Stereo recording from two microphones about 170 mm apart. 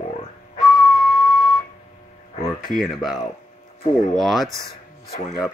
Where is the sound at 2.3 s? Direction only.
35° left (ahead or behind).